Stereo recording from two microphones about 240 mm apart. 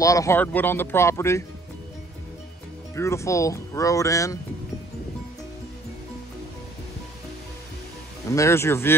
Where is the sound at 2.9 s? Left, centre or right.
Centre.